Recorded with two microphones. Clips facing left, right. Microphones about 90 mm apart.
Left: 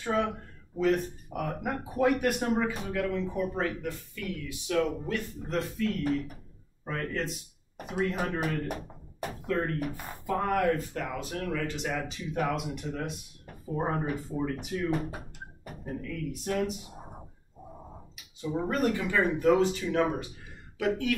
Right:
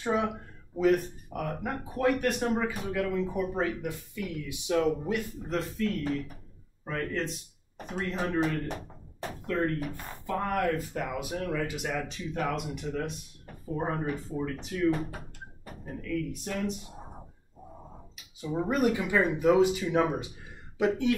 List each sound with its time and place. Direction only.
0.0 s a sound: 20° right (ahead or behind)
0.7 s speech: 5° right (ahead or behind)
3.8 s speech: 15° right (ahead or behind)
5.5 s speech: centre (ahead or behind)
11.0 s speech: 10° right (ahead or behind)
12.4 s speech: 5° left (ahead or behind)
18.1 s speech: 5° right (ahead or behind); by 21.2 s 25° right (ahead or behind)